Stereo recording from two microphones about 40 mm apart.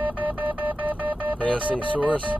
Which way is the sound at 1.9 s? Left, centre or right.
Right.